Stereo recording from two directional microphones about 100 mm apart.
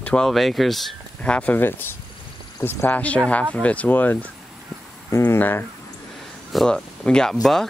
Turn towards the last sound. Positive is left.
turn(degrees=10)  # may be behind; listen again after turning